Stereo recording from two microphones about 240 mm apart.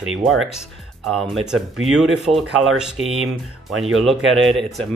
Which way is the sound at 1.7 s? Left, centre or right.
Right.